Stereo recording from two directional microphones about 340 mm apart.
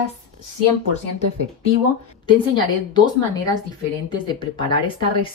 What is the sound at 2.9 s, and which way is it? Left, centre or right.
Speech, centre.